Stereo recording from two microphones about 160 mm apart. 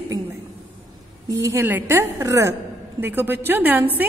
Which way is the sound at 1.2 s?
20° right (ahead or behind).